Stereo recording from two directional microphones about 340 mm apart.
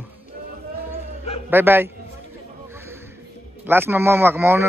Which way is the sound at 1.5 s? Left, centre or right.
Centre.